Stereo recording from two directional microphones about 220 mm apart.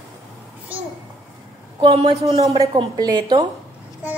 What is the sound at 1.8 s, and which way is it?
Speech, 25° right (ahead or behind).